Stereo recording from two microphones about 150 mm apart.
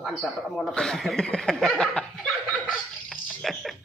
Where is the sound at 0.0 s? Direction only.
5° left (ahead or behind).